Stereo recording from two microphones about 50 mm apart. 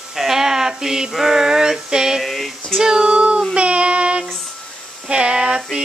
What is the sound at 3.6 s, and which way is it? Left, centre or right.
Child singing, right.